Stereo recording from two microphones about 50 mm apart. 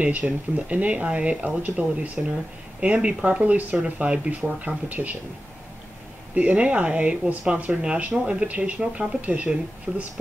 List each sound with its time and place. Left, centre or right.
0.0 s speech: right
6.3 s speech: right